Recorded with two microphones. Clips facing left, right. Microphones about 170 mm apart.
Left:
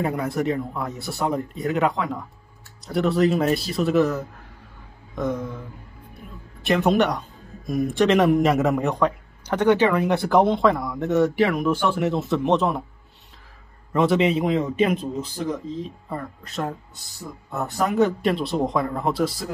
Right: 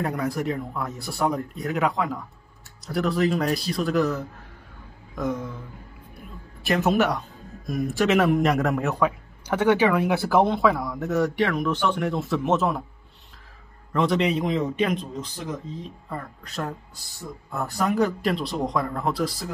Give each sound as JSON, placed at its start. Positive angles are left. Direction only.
{"t": 0.0, "sound": "a man's voice", "side_deg": 0}
{"t": 5.2, "sound": "a man's voice", "side_deg": 0}
{"t": 6.6, "sound": "a man's voice", "side_deg": 0}
{"t": 13.9, "sound": "a man's voice", "side_deg": 5}